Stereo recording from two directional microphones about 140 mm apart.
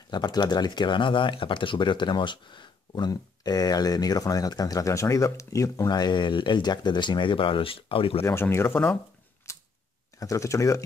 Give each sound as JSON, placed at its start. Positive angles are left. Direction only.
{"t": 0.1, "sound": "speech", "side_deg": 30}
{"t": 8.2, "sound": "speech", "side_deg": 20}
{"t": 9.5, "sound": "a sound", "side_deg": 20}
{"t": 10.1, "sound": "speech", "side_deg": 20}